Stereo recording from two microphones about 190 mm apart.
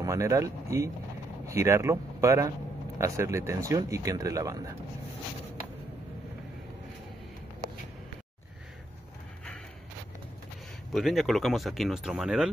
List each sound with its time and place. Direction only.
0.0 s speech: 15° right (ahead or behind)
10.9 s speech: centre (ahead or behind)